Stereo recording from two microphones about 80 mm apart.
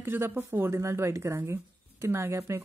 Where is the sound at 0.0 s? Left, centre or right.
Right.